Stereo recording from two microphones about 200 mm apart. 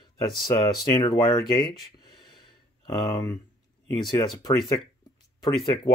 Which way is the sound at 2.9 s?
20° left (ahead or behind).